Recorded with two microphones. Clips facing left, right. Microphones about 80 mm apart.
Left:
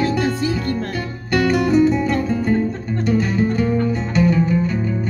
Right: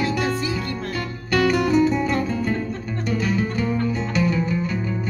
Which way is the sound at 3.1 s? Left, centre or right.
Left.